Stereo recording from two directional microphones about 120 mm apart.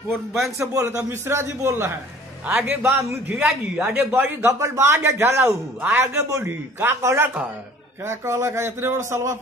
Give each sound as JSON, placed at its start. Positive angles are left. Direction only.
{"t": 0.1, "sound": "a man's voice", "side_deg": 0}
{"t": 0.6, "sound": "a man's voice", "side_deg": -25}
{"t": 3.3, "sound": "a man's voice", "side_deg": -5}
{"t": 4.1, "sound": "speech", "side_deg": -20}